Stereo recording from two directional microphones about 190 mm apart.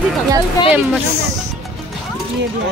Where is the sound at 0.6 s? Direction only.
20° left (ahead or behind).